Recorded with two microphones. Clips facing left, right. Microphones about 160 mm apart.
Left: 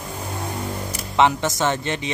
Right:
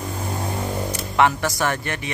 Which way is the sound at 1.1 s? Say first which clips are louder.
Left 1 dB; 20° left (ahead or behind).